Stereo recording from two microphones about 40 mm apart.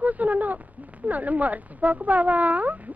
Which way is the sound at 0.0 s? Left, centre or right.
Right.